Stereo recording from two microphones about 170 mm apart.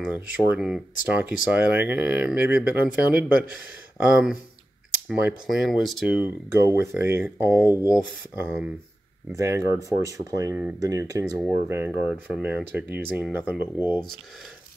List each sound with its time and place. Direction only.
0.0 s speech: 5° right (ahead or behind)
9.3 s speech: 20° right (ahead or behind)